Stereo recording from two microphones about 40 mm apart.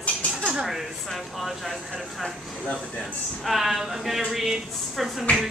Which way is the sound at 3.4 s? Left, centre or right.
Centre.